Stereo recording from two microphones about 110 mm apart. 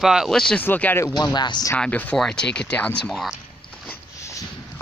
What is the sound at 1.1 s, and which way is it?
Speech, 40° left (ahead or behind).